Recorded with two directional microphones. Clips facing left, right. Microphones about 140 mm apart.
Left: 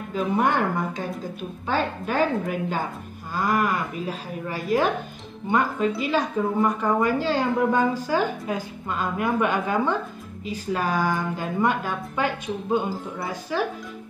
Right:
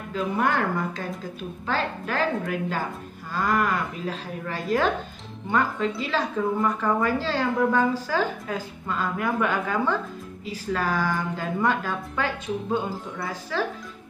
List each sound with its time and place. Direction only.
0.1 s a woman's voice: 20° left (ahead or behind)